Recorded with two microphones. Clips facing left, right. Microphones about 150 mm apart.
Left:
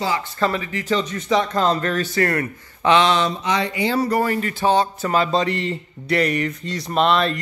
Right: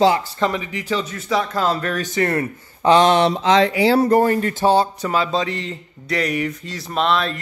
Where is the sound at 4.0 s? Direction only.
50° right (ahead or behind).